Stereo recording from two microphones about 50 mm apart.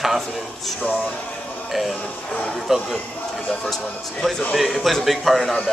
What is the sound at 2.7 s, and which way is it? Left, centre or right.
Speech, centre.